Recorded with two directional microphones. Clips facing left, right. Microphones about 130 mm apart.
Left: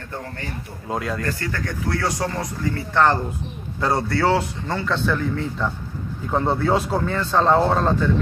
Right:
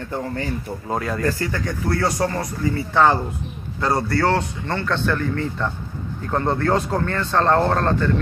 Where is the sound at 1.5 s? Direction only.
10° right (ahead or behind).